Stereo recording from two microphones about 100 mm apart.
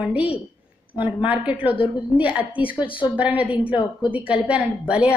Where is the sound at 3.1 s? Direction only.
15° right (ahead or behind).